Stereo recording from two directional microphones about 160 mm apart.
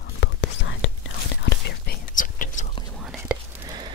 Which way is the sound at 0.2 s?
90° left.